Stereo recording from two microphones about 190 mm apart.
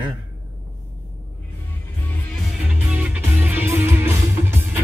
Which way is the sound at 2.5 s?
5° right (ahead or behind).